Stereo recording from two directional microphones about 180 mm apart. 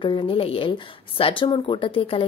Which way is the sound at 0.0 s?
25° left (ahead or behind).